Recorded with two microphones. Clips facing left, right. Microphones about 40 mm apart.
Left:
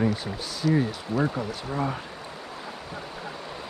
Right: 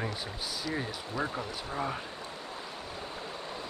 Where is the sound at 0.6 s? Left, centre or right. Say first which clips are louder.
Left 13 dB; left.